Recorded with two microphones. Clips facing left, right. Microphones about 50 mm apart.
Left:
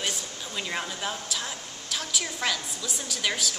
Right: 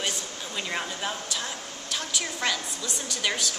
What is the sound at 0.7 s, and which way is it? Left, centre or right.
A woman's voice, centre.